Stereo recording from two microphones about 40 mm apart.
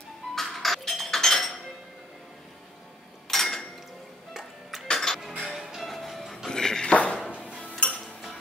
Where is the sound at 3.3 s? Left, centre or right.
Centre.